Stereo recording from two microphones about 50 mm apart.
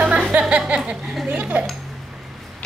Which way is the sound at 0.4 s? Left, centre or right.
Right.